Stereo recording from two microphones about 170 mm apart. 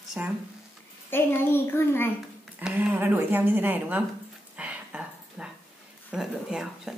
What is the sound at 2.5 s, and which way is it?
Speech, 10° right (ahead or behind).